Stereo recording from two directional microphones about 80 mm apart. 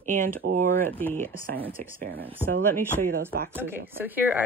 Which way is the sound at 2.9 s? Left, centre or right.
Right.